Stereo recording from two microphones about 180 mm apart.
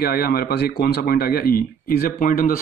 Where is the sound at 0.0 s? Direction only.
55° left (ahead or behind).